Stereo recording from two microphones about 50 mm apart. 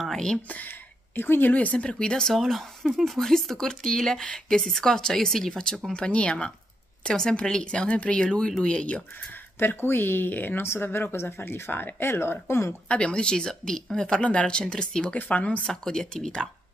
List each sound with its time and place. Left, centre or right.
0.1 s speech: centre
0.5 s speech: left
1.5 s speech: left
2.3 s speech: centre; by 9.0 s left
9.6 s speech: left
12.8 s speech: left
15.1 s speech: left
15.6 s speech: centre